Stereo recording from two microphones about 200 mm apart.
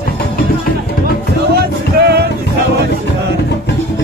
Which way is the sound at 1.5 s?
55° right (ahead or behind).